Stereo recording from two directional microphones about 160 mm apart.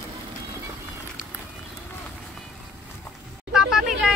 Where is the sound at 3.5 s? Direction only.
5° right (ahead or behind).